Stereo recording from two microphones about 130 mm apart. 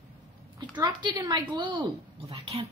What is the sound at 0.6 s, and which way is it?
Speech, 35° right (ahead or behind).